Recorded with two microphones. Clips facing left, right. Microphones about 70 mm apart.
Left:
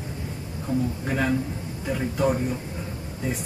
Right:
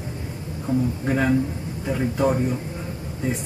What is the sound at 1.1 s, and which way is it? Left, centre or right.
Speech, centre.